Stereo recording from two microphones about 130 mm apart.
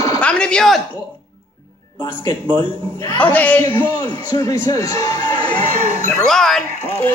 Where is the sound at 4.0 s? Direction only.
30° left (ahead or behind).